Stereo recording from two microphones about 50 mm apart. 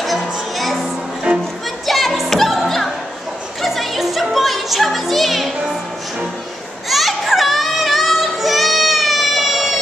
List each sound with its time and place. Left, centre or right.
0.0 s music: centre
1.3 s music: right
1.9 s music: centre
6.9 s music: centre